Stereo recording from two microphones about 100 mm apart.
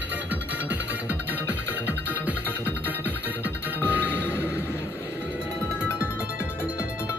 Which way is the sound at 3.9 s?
15° right (ahead or behind).